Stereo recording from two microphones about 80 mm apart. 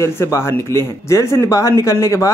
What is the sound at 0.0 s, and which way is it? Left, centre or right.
A man's voice, left.